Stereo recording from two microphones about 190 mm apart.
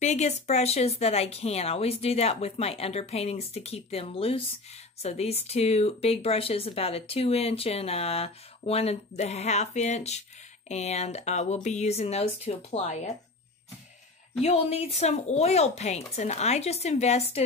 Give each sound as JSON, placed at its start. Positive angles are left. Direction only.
{"t": 0.0, "sound": "speech", "side_deg": 35}
{"t": 14.4, "sound": "speech", "side_deg": 35}